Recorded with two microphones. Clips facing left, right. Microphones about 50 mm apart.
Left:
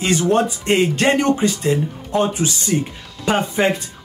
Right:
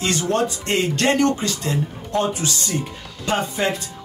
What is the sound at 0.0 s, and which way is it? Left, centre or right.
Speech, centre.